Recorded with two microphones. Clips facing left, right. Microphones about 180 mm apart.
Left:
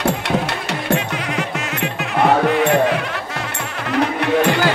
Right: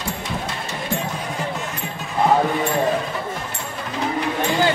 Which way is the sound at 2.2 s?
70° left (ahead or behind).